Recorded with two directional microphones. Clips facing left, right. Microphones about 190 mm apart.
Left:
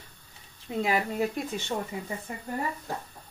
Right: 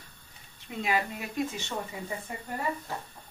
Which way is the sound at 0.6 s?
35° left (ahead or behind).